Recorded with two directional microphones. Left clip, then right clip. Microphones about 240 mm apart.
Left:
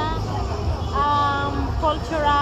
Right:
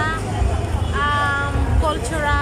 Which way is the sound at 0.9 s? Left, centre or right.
Centre.